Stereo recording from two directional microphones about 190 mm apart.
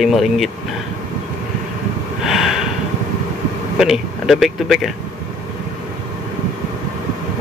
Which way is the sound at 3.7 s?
Centre (ahead or behind).